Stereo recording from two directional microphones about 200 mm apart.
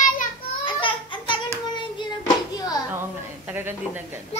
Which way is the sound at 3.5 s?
10° right (ahead or behind).